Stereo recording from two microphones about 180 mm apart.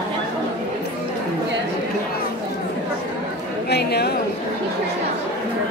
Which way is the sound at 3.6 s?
65° left (ahead or behind).